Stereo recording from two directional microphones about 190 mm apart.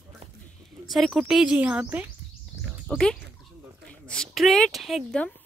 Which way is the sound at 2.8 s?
5° left (ahead or behind).